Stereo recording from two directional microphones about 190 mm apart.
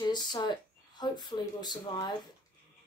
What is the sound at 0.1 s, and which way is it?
Speech, 20° left (ahead or behind).